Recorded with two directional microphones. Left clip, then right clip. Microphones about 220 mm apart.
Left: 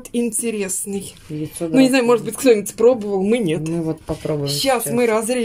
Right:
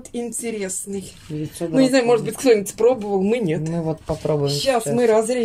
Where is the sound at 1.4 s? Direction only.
Centre (ahead or behind).